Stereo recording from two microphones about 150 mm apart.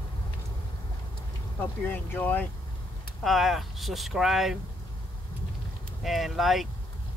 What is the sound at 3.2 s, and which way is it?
Speech, centre (ahead or behind).